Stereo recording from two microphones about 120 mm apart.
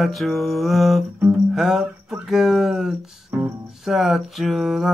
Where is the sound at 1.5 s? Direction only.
5° right (ahead or behind).